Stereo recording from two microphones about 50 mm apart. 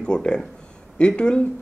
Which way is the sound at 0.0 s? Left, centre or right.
Centre.